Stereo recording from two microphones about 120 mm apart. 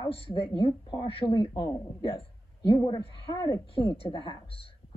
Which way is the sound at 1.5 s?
30° left (ahead or behind).